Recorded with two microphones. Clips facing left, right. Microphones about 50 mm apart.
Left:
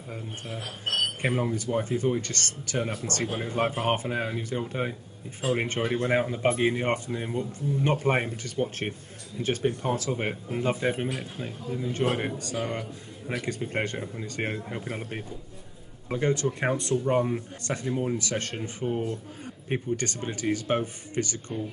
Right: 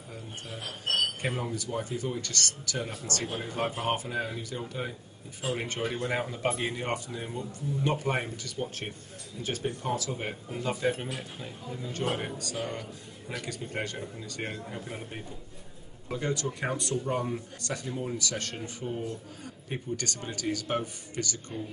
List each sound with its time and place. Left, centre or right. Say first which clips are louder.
1.2 s speech: left 5 dB; left
5.9 s speech: left 6 dB; left
12.5 s speech: left 4 dB; centre
13.5 s speech: left 5 dB; left
16.1 s speech: left 5 dB; left